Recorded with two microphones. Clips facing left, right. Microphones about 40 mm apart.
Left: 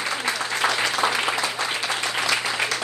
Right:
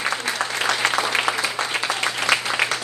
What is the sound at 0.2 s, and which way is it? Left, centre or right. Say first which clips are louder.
Applause: even; right.